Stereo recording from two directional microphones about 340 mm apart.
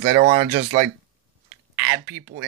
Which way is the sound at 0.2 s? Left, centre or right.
Right.